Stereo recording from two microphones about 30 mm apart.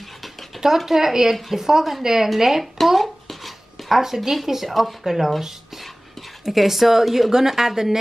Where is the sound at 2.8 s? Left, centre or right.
Centre.